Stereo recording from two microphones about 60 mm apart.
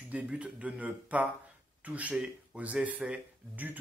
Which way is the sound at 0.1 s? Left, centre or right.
Right.